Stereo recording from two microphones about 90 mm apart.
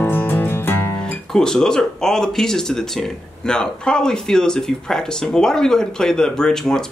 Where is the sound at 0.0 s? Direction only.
20° left (ahead or behind).